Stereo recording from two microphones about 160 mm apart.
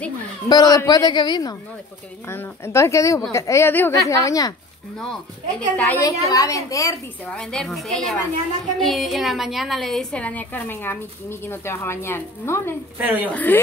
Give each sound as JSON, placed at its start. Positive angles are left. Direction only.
{"t": 0.5, "sound": "speech", "side_deg": 25}
{"t": 2.2, "sound": "speech", "side_deg": 15}
{"t": 4.9, "sound": "a woman's voice", "side_deg": 5}
{"t": 6.0, "sound": "speech", "side_deg": 20}
{"t": 7.2, "sound": "a woman's voice", "side_deg": 5}
{"t": 12.9, "sound": "a woman's voice", "side_deg": -10}
{"t": 13.3, "sound": "a woman's voice", "side_deg": 10}